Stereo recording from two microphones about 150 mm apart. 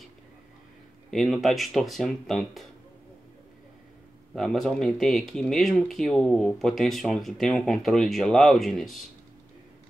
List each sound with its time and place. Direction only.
1.1 s speech: centre (ahead or behind)
4.4 s speech: 5° left (ahead or behind)